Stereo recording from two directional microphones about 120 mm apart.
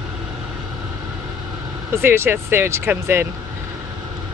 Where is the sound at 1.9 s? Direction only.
20° right (ahead or behind).